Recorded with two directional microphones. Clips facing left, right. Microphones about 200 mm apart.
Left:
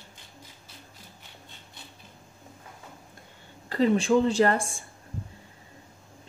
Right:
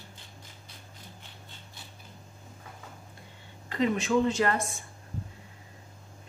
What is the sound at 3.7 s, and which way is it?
Speech, 35° left (ahead or behind).